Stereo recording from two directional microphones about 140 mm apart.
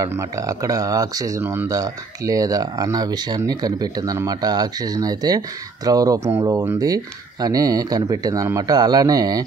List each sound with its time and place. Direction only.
0.0 s speech: 20° right (ahead or behind)